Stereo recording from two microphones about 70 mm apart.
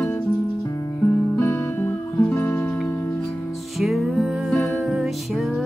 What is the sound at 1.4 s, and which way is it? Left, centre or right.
Music, left.